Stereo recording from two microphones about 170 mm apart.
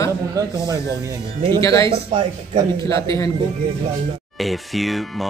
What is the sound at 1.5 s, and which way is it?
Speech, 15° left (ahead or behind).